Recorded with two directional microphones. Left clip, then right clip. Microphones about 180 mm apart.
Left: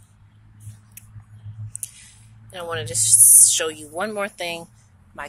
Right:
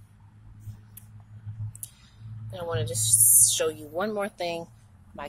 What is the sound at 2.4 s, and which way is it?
Speech, centre (ahead or behind).